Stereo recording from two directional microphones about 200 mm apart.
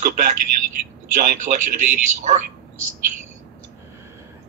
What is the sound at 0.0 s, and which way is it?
A man's voice, 40° right (ahead or behind).